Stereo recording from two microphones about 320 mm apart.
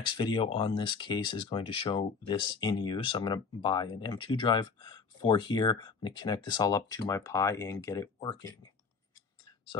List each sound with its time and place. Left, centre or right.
0.2 s speech: centre